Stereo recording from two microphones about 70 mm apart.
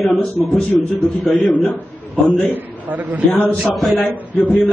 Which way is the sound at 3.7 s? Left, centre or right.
Centre.